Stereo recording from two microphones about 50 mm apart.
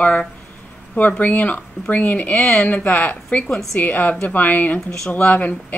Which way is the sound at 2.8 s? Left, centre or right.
Left.